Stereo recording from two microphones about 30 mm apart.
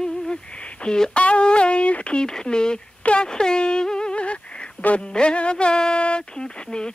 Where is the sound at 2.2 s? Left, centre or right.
Left.